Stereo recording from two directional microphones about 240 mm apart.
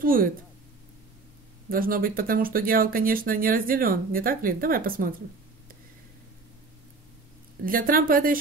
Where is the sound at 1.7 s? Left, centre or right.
Right.